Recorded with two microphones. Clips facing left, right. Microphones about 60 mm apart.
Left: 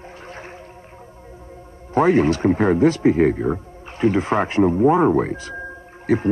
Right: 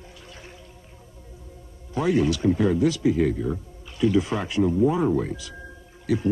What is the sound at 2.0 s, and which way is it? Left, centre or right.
A man's voice, left.